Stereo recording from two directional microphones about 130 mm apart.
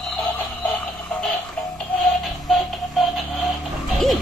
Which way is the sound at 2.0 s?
Centre (ahead or behind).